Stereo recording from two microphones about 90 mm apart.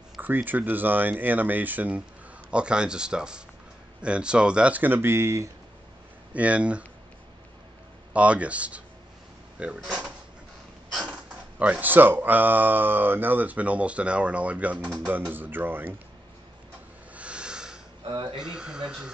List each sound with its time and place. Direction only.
0.2 s speech: 20° right (ahead or behind)
6.3 s speech: 15° right (ahead or behind)
8.1 s speech: 15° right (ahead or behind)
11.1 s speech: 15° right (ahead or behind)
17.1 s a sound: 15° right (ahead or behind)
18.1 s speech: 60° right (ahead or behind)
18.4 s speech: 10° right (ahead or behind)